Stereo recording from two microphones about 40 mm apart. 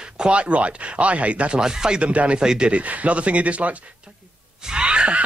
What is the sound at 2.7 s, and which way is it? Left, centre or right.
Speech, right.